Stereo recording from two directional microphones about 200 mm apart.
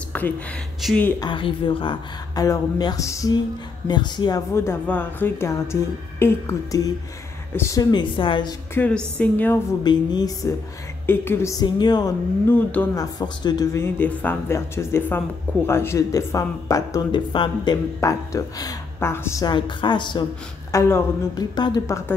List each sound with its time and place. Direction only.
0.1 s a sound: 10° left (ahead or behind)
0.7 s speech: 5° left (ahead or behind)
1.2 s a woman's voice: 25° left (ahead or behind)
8.7 s speech: 5° left (ahead or behind)
9.8 s a woman's voice: 20° left (ahead or behind)
12.4 s speech: 10° left (ahead or behind)